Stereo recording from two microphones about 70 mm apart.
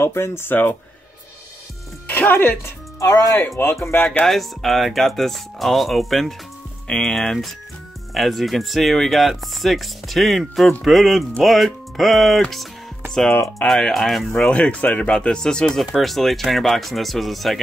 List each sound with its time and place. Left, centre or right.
0.0 s speech: left
2.0 s speech: left
3.0 s speech: left
3.3 s speech: left
4.3 s speech: centre
14.5 s speech: centre
15.8 s speech: centre